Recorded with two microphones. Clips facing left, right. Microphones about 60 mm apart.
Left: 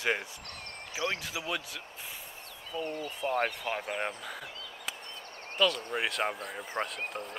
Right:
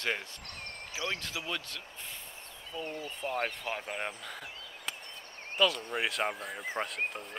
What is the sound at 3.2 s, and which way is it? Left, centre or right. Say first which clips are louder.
Speech: left 4 dB; left.